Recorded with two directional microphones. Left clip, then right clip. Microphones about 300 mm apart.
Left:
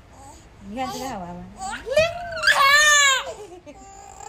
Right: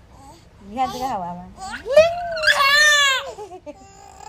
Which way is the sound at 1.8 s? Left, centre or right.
Centre.